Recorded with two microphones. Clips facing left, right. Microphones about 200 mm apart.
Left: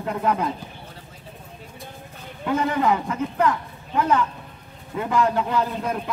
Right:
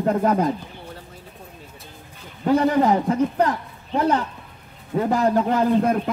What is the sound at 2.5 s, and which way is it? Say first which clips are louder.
A man's voice: right 4 dB; 35° right (ahead or behind).